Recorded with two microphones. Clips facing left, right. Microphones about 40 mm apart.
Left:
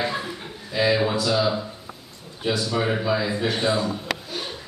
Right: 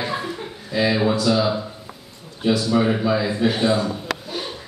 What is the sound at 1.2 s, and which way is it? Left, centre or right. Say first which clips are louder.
A man's voice: right 3 dB; centre.